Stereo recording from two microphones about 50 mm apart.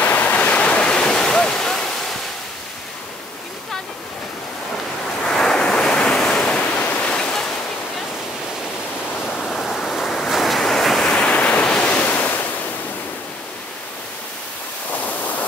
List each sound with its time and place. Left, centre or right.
0.0 s waves: left; by 1.9 s centre
5.2 s waves: centre
6.6 s waterfall: left; by 7.4 s centre
9.4 s waves: centre
11.1 s waves: centre